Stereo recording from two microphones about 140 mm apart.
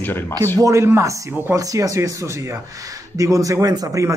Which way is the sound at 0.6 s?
20° right (ahead or behind).